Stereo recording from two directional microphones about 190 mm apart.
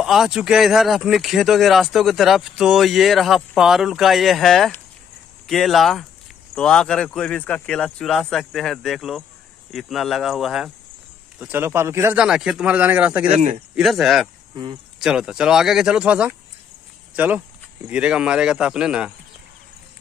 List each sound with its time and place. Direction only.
0.0 s speech: centre (ahead or behind)